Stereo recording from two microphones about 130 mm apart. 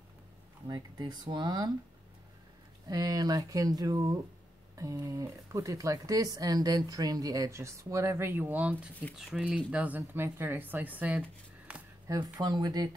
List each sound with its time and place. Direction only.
0.7 s speech: 30° right (ahead or behind)
2.9 s speech: 30° right (ahead or behind); by 11.8 s 10° right (ahead or behind)
12.1 s speech: 30° right (ahead or behind)